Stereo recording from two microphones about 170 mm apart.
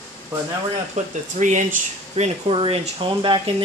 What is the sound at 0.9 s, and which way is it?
Speech, 45° right (ahead or behind).